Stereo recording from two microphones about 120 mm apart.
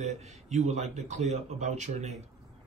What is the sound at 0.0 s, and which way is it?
Speech, 75° right (ahead or behind).